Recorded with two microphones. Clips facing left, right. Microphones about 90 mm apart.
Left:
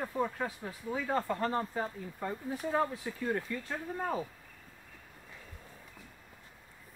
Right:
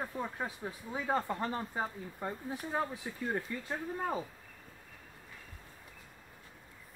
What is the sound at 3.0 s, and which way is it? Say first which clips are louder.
Speech: left 2 dB; 15° right (ahead or behind).